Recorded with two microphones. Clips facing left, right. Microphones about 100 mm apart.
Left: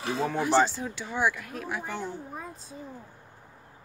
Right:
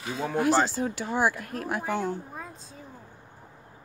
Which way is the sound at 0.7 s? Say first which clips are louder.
Right 4 dB; 45° right (ahead or behind).